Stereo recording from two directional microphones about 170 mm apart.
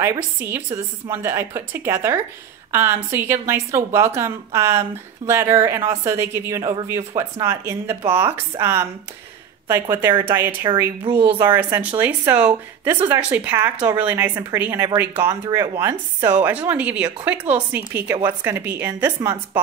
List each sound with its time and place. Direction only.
0.0 s a woman's voice: 15° right (ahead or behind)